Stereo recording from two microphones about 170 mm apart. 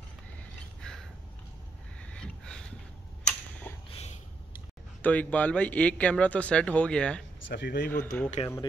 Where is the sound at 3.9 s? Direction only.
40° left (ahead or behind).